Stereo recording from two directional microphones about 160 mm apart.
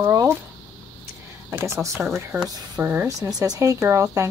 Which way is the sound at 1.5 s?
15° right (ahead or behind).